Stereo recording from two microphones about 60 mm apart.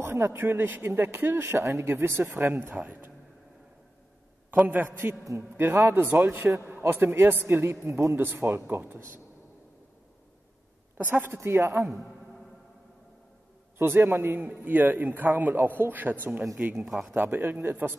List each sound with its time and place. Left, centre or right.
0.0 s a man's voice: right
2.7 s a man's voice: right
4.6 s a man's voice: right
6.4 s a man's voice: right
6.9 s a man's voice: right
7.8 s a man's voice: right
11.0 s a man's voice: right
11.3 s a man's voice: right
11.9 s a sound: centre
13.7 s a man's voice: right
16.7 s speech: centre
17.1 s a man's voice: right